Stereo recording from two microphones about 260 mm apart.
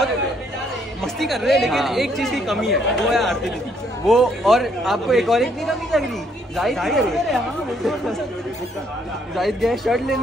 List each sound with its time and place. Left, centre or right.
1.0 s speech: centre
9.3 s speech: centre